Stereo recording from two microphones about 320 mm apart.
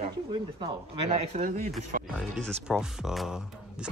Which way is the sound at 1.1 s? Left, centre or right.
Right.